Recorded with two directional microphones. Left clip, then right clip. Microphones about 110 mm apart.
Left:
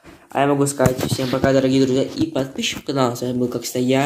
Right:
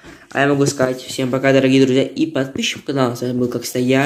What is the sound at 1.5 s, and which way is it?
Speech, 25° right (ahead or behind).